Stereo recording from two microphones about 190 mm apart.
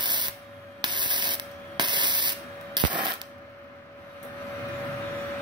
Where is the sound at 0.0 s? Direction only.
25° right (ahead or behind).